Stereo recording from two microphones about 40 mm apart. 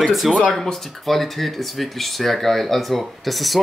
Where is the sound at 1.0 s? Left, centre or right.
Centre.